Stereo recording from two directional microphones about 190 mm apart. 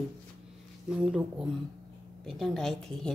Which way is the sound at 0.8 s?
5° right (ahead or behind).